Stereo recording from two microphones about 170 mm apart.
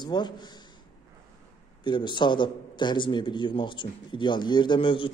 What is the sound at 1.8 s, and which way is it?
A man's voice, 25° left (ahead or behind).